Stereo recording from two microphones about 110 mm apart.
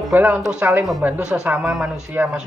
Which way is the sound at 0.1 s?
10° right (ahead or behind).